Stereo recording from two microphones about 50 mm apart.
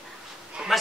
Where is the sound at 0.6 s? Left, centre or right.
Right.